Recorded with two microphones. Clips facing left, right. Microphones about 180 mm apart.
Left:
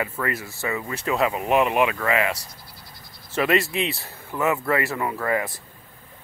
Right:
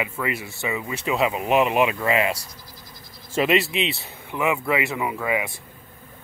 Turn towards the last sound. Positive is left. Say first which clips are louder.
# left 1 dB
turn(degrees=-5)  # may be behind; listen again after turning